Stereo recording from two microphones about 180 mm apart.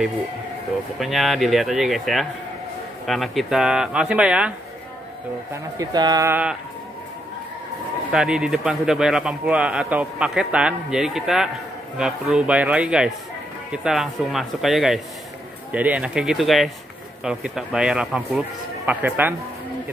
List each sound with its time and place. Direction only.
0.9 s a man's voice: centre (ahead or behind)
5.5 s speech: 20° right (ahead or behind)
8.1 s a man's voice: 5° right (ahead or behind)